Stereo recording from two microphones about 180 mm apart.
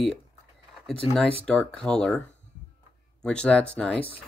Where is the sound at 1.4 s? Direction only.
5° left (ahead or behind).